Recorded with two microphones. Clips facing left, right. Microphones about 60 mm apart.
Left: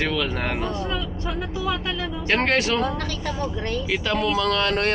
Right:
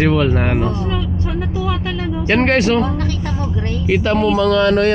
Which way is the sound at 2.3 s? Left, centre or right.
Right.